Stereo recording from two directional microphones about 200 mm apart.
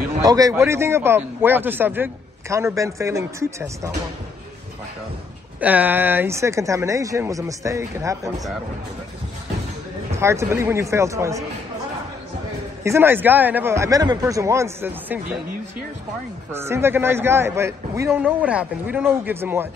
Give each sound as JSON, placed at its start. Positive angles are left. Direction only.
{"t": 0.2, "sound": "a man's voice", "side_deg": -20}
{"t": 5.6, "sound": "a man's voice", "side_deg": -10}
{"t": 10.1, "sound": "a man's voice", "side_deg": -15}
{"t": 12.8, "sound": "a man's voice", "side_deg": -10}
{"t": 16.5, "sound": "a man's voice", "side_deg": -10}